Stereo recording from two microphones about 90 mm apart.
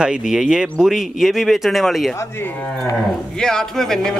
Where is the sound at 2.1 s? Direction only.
30° left (ahead or behind).